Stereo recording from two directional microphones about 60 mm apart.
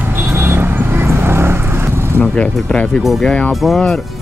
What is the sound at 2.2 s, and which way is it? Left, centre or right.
Speech, centre.